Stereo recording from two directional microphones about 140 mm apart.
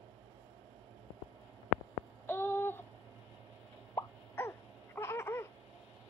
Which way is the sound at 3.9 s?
20° left (ahead or behind).